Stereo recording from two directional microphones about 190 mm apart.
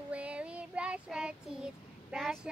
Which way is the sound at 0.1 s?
5° right (ahead or behind).